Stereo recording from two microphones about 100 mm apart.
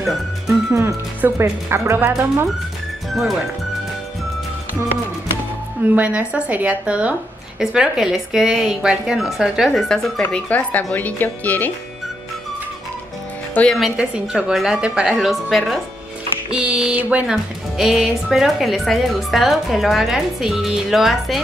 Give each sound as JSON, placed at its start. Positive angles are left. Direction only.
{"t": 0.0, "sound": "music", "side_deg": 0}
{"t": 1.2, "sound": "speech", "side_deg": -25}
{"t": 3.1, "sound": "speech", "side_deg": 0}
{"t": 5.9, "sound": "a woman's voice", "side_deg": -15}
{"t": 10.2, "sound": "speech", "side_deg": 15}
{"t": 13.7, "sound": "speech", "side_deg": 0}